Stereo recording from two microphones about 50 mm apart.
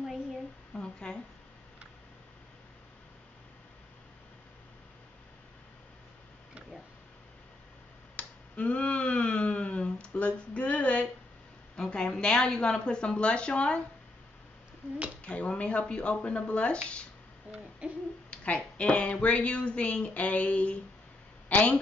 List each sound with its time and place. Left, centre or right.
0.7 s a sound: centre
8.2 s a sound: left
11.7 s a woman's voice: centre
15.2 s a woman's voice: left
17.5 s hoot: right
18.3 s a woman's voice: left